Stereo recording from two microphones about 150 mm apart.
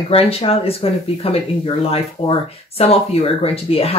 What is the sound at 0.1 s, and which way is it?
Speech, 40° left (ahead or behind).